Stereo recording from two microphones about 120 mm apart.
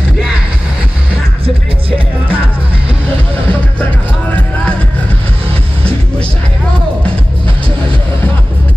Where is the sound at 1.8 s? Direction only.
50° right (ahead or behind).